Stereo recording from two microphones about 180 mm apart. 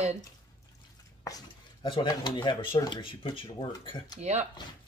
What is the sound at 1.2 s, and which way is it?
Speech, 25° left (ahead or behind).